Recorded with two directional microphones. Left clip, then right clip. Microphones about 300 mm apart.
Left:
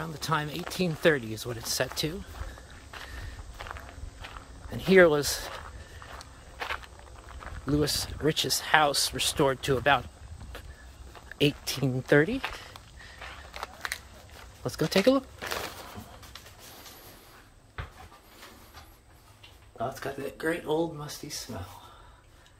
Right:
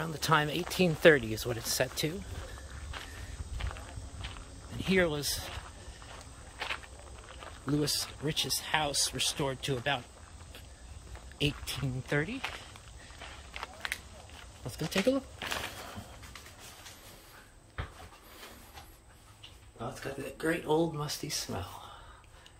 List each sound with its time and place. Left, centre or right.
0.0 s speech: centre
3.6 s walk: centre
4.7 s speech: centre
6.6 s walk: centre
7.6 s speech: centre
11.3 s speech: centre
13.5 s a sound: centre
14.6 s speech: centre
20.0 s speech: centre